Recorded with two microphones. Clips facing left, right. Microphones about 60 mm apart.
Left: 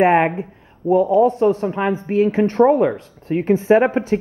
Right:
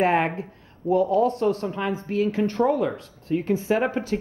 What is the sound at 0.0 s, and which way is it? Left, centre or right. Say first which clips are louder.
Speech: left 7 dB; left.